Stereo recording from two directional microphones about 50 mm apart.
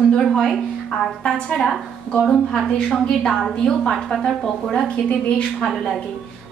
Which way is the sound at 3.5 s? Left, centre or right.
Centre.